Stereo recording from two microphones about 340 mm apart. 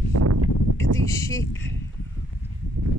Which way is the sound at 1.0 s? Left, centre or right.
Centre.